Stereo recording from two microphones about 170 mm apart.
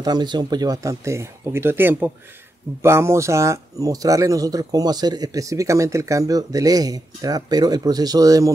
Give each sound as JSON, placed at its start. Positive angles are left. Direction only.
{"t": 0.0, "sound": "speech", "side_deg": -25}